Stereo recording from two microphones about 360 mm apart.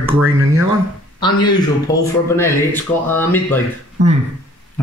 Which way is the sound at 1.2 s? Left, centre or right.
Centre.